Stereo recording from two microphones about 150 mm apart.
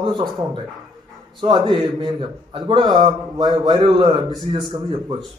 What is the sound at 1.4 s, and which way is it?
A man's voice, 30° right (ahead or behind).